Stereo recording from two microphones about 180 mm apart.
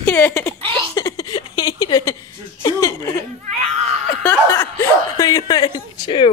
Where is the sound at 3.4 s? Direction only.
40° right (ahead or behind).